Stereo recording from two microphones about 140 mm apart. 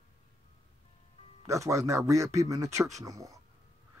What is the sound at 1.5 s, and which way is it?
Speech, 20° right (ahead or behind).